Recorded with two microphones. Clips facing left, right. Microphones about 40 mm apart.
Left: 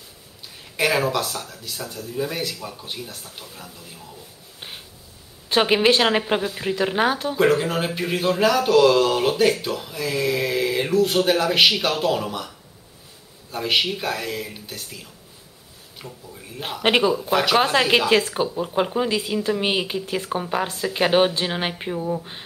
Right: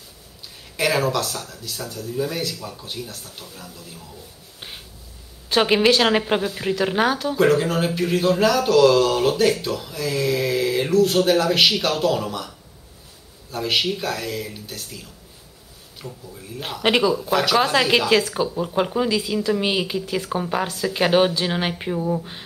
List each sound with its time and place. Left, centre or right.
0.7 s speech: centre
4.6 s a sound: centre
5.6 s speech: centre
19.0 s a woman's voice: left
19.8 s speech: centre
20.1 s speech: left
20.3 s speech: centre
20.6 s speech: left
20.9 s speech: centre